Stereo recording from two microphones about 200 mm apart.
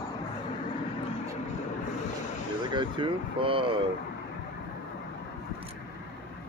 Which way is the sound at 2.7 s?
25° right (ahead or behind).